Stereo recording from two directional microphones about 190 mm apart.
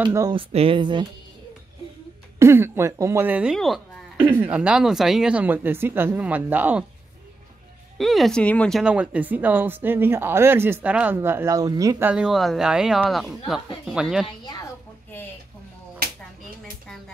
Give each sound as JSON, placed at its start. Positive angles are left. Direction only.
{"t": 0.0, "sound": "speech", "side_deg": -15}
{"t": 2.3, "sound": "speech", "side_deg": -15}
{"t": 8.0, "sound": "speech", "side_deg": 0}
{"t": 12.1, "sound": "speech", "side_deg": -5}
{"t": 14.4, "sound": "a sound", "side_deg": 20}